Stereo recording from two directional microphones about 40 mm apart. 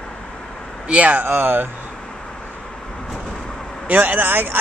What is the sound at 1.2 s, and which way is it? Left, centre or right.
Speech, right.